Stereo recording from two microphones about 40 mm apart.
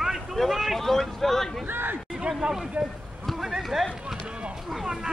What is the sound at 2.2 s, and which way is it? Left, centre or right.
Speech, centre.